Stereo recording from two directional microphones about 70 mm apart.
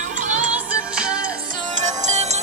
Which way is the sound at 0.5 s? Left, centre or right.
Centre.